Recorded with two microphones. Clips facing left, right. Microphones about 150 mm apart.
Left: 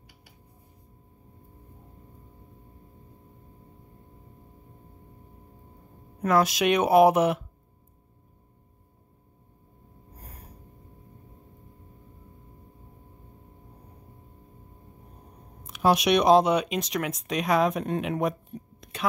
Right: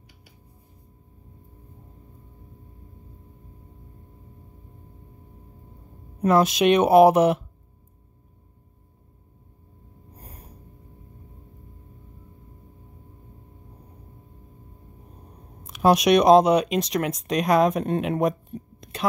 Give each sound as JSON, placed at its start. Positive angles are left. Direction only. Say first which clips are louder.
{"t": 6.2, "sound": "speech", "louder": "right 4 dB", "side_deg": -25}
{"t": 15.6, "sound": "speech", "louder": "right 4 dB", "side_deg": -45}
{"t": 18.8, "sound": "a sound", "louder": "right 5 dB", "side_deg": -35}